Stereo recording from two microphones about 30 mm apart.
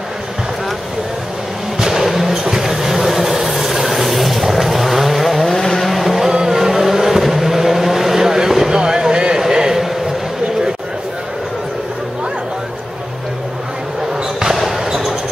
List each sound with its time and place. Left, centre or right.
1.8 s vehicle: centre
2.0 s a sound: centre
2.5 s vehicle: centre
5.4 s vehicle: centre
5.8 s vehicle: centre
8.7 s a sound: right
14.7 s basketball bounce: centre